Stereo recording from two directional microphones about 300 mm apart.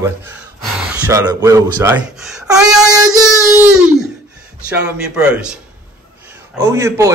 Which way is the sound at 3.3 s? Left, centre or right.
Centre.